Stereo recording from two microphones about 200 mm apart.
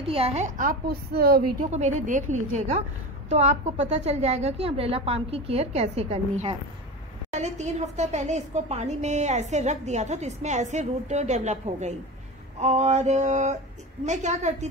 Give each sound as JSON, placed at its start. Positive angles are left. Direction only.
{"t": 0.0, "sound": "a woman's voice", "side_deg": -30}
{"t": 1.7, "sound": "a woman's voice", "side_deg": -35}